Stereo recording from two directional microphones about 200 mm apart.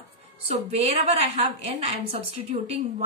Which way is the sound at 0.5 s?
30° right (ahead or behind).